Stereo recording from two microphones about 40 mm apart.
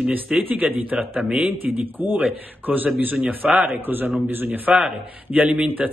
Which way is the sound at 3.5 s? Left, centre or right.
Right.